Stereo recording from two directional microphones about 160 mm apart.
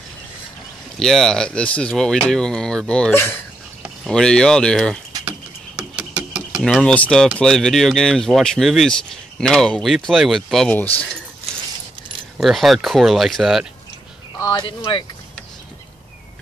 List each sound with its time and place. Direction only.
0.9 s speech: centre (ahead or behind)
3.8 s speech: centre (ahead or behind)
5.9 s speech: 5° right (ahead or behind)
12.4 s speech: centre (ahead or behind)
14.4 s speech: 25° left (ahead or behind)